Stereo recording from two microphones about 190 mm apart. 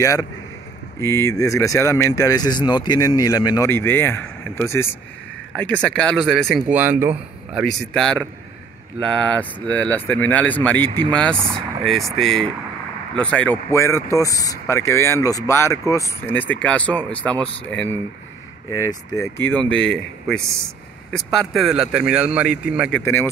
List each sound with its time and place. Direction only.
0.0 s speech: 15° left (ahead or behind); by 22.5 s 5° right (ahead or behind)
22.8 s speech: 10° left (ahead or behind)